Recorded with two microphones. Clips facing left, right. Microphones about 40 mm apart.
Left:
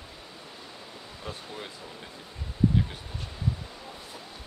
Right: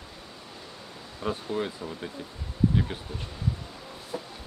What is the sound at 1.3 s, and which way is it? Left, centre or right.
Speech, right.